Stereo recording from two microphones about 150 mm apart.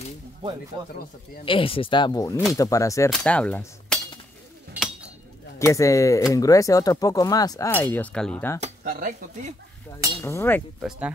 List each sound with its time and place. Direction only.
1.4 s speech: 35° left (ahead or behind)
3.1 s cutlery: 10° left (ahead or behind)
5.6 s speech: 20° left (ahead or behind)
8.8 s speech: 60° right (ahead or behind)
10.2 s speech: 15° left (ahead or behind)
10.8 s speech: 5° right (ahead or behind)